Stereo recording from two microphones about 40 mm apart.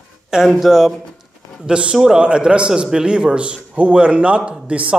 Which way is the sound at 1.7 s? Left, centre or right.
Right.